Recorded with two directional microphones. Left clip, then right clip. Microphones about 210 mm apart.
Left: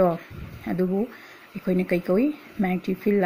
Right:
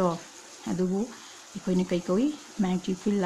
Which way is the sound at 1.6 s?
10° left (ahead or behind).